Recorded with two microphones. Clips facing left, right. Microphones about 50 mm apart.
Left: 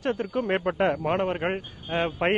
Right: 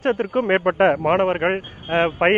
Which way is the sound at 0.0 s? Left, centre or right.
Right.